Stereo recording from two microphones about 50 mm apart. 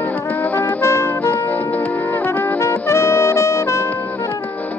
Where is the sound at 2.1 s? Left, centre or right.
Left.